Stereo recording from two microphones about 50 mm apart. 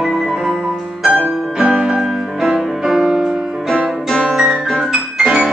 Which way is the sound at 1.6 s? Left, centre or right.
Centre.